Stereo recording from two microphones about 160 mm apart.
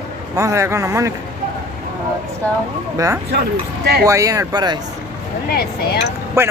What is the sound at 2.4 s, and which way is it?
Speech, 10° left (ahead or behind).